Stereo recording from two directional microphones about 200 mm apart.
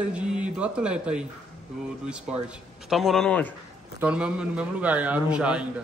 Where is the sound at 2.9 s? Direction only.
Centre (ahead or behind).